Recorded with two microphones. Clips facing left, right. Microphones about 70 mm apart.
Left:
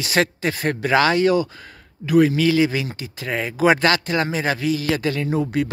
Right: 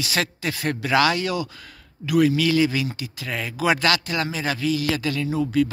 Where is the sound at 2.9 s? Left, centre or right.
Left.